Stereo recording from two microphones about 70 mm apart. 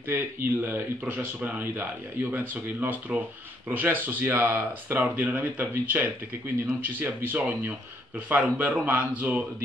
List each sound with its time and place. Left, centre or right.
0.1 s speech: right